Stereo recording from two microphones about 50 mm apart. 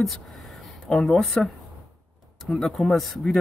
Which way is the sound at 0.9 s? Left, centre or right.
Centre.